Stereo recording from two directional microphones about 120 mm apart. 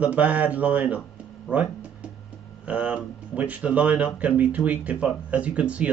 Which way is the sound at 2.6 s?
10° right (ahead or behind).